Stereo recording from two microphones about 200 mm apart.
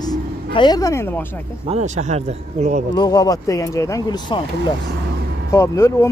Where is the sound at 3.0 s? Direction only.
20° left (ahead or behind).